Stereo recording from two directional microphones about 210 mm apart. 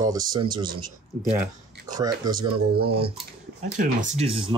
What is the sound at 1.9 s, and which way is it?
Speech, 15° right (ahead or behind).